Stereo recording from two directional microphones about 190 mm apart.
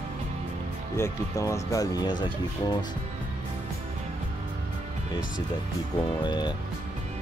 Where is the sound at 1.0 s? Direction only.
15° left (ahead or behind).